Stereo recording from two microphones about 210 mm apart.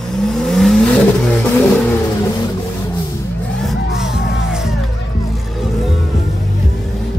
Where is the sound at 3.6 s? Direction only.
Centre (ahead or behind).